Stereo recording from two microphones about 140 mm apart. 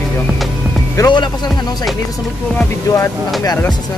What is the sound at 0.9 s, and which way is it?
Speech, 30° left (ahead or behind).